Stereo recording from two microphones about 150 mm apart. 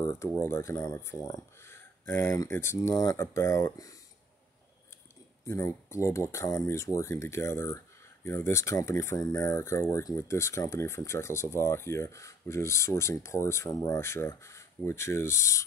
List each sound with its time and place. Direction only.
0.0 s a sound: 20° left (ahead or behind)
0.4 s speech: 15° left (ahead or behind)
5.4 s speech: 20° left (ahead or behind)